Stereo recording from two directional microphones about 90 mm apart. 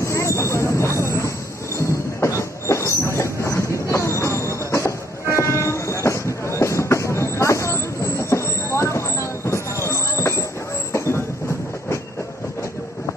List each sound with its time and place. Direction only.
0.0 s vehicle: 35° left (ahead or behind)
2.2 s train: 30° left (ahead or behind)